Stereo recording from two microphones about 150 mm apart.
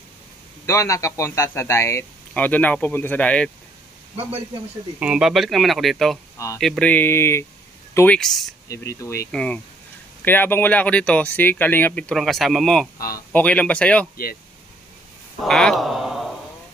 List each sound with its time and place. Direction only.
0.7 s a man's voice: 20° left (ahead or behind)
5.0 s speech: 5° right (ahead or behind)
6.3 s speech: 20° left (ahead or behind)
6.6 s a man's voice: 5° left (ahead or behind)
8.2 s speech: centre (ahead or behind)
8.6 s speech: 20° left (ahead or behind)
9.3 s a man's voice: 5° left (ahead or behind)
15.4 s speech: 5° left (ahead or behind)